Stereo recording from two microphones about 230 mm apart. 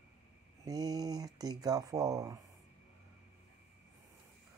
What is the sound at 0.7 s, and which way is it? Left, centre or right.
Speech, centre.